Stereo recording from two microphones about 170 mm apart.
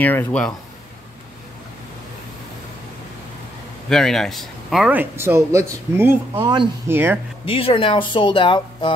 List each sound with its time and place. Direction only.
0.0 s speech: 10° left (ahead or behind)
3.9 s a man's voice: 5° left (ahead or behind); by 7.2 s 15° right (ahead or behind)
7.4 s speech: 30° left (ahead or behind)